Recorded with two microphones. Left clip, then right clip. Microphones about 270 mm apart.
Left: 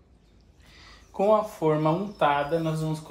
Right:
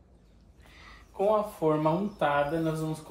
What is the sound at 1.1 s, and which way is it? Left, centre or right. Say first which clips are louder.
Speech: left 4 dB; left.